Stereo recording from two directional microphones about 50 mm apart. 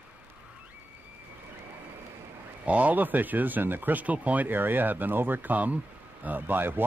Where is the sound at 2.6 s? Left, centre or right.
Right.